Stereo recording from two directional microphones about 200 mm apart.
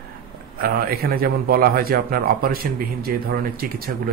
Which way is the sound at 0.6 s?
50° right (ahead or behind).